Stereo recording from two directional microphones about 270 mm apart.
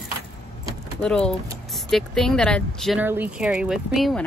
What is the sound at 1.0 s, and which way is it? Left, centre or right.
Speech, centre.